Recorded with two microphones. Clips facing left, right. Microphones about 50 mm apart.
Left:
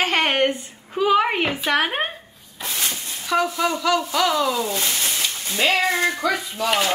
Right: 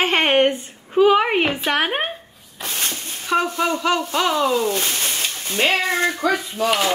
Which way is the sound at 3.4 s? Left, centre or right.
Right.